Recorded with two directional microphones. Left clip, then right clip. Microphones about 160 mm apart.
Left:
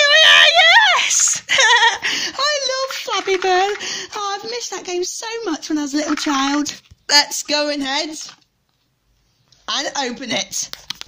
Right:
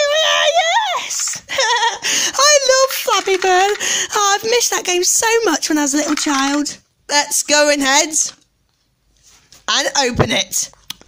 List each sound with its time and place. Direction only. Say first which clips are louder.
0.0 s goat: left 4 dB; 25° right (ahead or behind)
2.0 s a sound: right 4 dB; 30° right (ahead or behind)
5.9 s speech: right 2 dB; 20° right (ahead or behind); by 8.3 s 35° right (ahead or behind)
9.7 s speech: right 6 dB; 25° right (ahead or behind)